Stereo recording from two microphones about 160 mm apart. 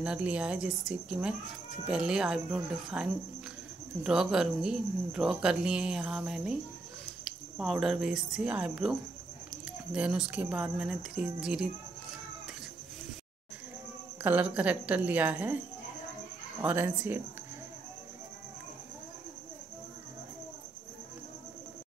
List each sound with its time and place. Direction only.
0.0 s a woman's voice: 5° right (ahead or behind)
9.9 s speech: 5° right (ahead or behind)
14.2 s a woman's voice: 10° right (ahead or behind)
16.6 s a woman's voice: 10° right (ahead or behind)